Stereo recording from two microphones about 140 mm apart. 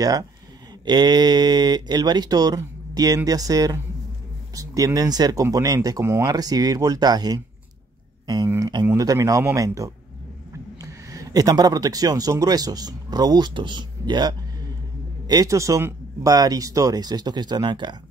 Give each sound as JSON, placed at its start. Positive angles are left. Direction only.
{"t": 0.0, "sound": "speech", "side_deg": -25}